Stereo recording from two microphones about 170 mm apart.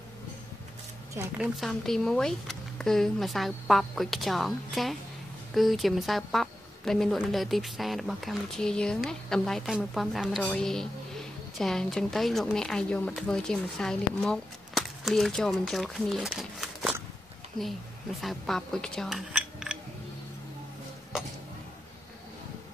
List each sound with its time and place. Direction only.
1.2 s speech: 15° right (ahead or behind)
1.6 s speech: centre (ahead or behind)
18.2 s speech: centre (ahead or behind)